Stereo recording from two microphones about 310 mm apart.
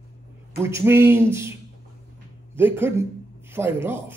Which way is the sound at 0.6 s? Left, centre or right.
Centre.